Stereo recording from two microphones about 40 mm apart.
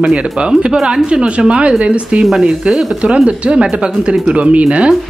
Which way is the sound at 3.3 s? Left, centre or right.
Right.